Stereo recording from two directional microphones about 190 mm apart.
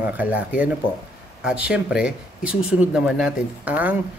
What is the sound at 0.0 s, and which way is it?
Speech, 10° right (ahead or behind).